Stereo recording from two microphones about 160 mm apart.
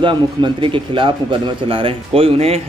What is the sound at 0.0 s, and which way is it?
Speech, 30° right (ahead or behind).